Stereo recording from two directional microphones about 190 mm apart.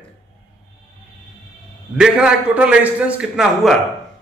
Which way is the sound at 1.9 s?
5° right (ahead or behind).